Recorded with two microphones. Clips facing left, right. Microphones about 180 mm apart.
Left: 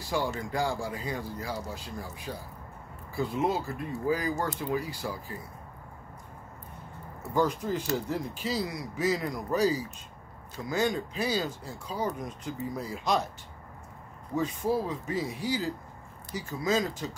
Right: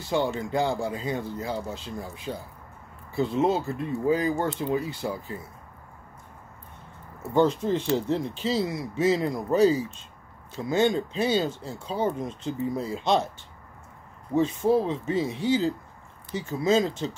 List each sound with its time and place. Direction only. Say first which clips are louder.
0.0 s speech: right 5 dB; 25° right (ahead or behind)
7.3 s speech: right 5 dB; 25° right (ahead or behind)
14.3 s speech: right 6 dB; 25° right (ahead or behind)